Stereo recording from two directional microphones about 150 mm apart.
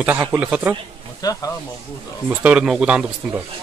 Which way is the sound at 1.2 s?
25° left (ahead or behind).